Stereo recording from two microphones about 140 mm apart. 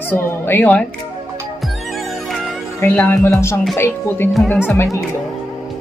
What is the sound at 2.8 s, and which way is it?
Speech, 15° left (ahead or behind).